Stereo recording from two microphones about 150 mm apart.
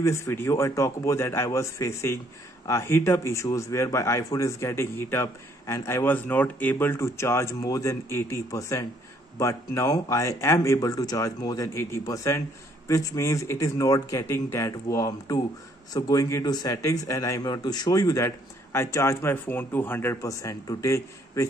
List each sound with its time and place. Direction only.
0.0 s speech: 20° left (ahead or behind)